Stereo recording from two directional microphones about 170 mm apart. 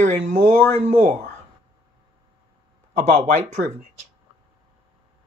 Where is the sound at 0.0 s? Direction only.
45° right (ahead or behind).